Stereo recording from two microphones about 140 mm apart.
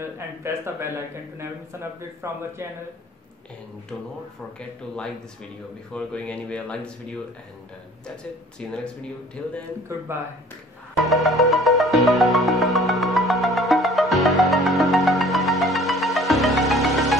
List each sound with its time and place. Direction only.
0.0 s speech: 20° right (ahead or behind)
5.9 s speech: 10° left (ahead or behind)
8.2 s speech: 5° left (ahead or behind)
11.1 s music: centre (ahead or behind)